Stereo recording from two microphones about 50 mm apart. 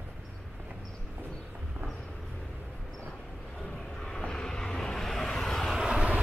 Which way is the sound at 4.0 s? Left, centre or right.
Centre.